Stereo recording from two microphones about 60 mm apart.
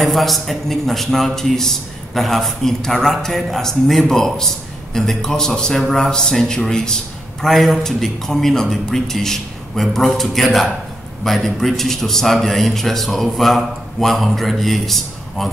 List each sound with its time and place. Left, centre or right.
0.0 s a man's voice: centre